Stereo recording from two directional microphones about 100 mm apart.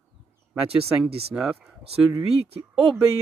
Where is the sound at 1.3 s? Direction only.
10° right (ahead or behind).